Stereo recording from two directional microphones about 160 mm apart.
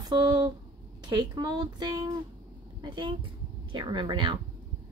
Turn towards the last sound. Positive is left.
turn(degrees=-30)  # may be behind; listen again after turning